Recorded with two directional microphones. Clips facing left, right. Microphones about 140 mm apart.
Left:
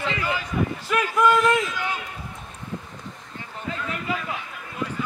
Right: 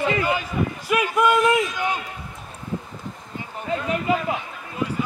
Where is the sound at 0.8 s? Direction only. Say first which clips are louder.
Right 1 dB; 10° right (ahead or behind).